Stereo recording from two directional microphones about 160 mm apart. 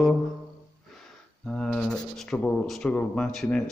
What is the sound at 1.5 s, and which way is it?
Speech, 5° left (ahead or behind).